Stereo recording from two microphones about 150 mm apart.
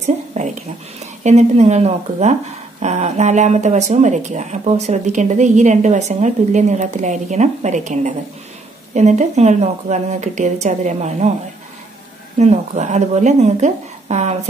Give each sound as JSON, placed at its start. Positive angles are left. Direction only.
{"t": 0.0, "sound": "a woman's voice", "side_deg": -50}
{"t": 12.4, "sound": "speech", "side_deg": -50}